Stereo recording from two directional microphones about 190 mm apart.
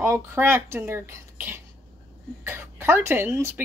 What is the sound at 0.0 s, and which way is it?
A woman's voice, 15° right (ahead or behind).